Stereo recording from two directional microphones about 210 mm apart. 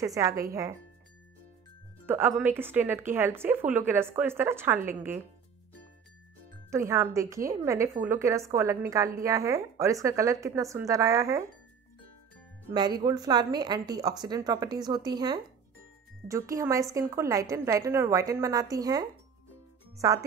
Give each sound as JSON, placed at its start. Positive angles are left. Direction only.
{"t": 0.0, "sound": "a woman's voice", "side_deg": -15}
{"t": 2.0, "sound": "a woman's voice", "side_deg": -10}
{"t": 6.7, "sound": "a woman's voice", "side_deg": -15}
{"t": 12.7, "sound": "a woman's voice", "side_deg": -20}